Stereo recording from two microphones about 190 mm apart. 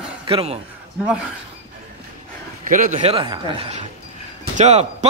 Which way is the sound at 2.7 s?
45° right (ahead or behind).